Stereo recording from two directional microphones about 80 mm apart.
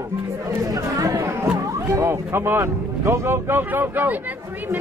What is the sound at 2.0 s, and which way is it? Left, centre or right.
Speech, right.